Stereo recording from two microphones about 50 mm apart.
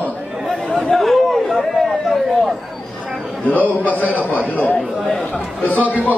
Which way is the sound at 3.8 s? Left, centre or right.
Left.